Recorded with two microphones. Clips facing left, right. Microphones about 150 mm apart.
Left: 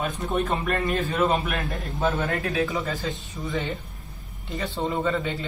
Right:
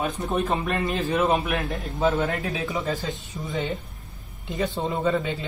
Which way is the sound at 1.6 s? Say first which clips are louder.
Right 2 dB; centre (ahead or behind).